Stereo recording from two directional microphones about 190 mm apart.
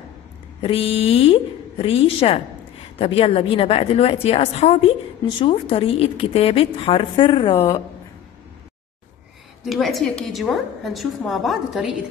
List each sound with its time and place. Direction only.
0.6 s a woman's voice: 30° left (ahead or behind)
9.7 s a woman's voice: centre (ahead or behind)